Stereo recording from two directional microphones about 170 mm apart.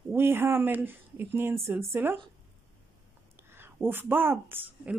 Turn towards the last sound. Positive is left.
turn(degrees=-10)  # may be behind; listen again after turning